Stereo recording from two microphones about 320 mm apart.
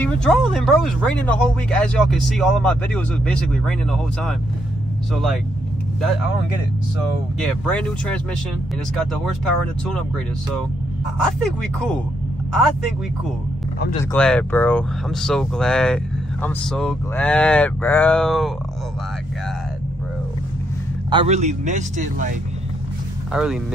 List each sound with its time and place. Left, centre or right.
0.0 s speech: centre
7.4 s speech: centre
11.3 s speech: centre
14.1 s speech: centre
21.1 s a man's voice: centre
23.3 s speech: centre